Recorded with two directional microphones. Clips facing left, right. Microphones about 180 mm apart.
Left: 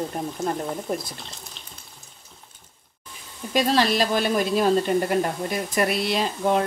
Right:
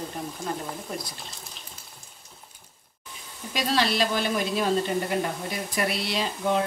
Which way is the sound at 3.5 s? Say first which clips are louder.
Left 5 dB; 45° left (ahead or behind).